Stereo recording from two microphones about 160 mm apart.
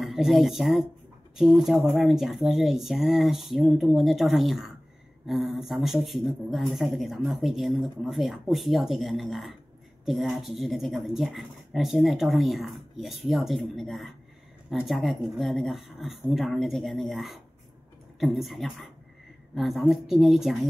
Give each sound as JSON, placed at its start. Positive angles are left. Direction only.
{"t": 0.0, "sound": "speech", "side_deg": 0}